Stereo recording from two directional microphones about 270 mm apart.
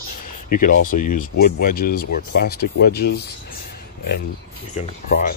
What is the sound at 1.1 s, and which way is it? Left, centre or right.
Speech, left.